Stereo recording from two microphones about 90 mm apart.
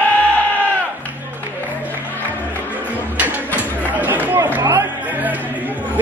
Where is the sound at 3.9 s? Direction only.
20° right (ahead or behind).